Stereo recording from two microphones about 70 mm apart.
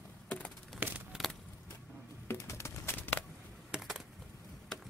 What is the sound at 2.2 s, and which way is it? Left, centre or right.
Pigeon, left.